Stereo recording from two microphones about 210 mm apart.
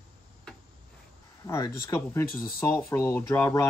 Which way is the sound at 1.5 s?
15° left (ahead or behind).